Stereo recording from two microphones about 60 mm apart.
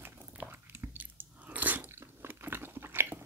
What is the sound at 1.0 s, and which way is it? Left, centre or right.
Biting, right.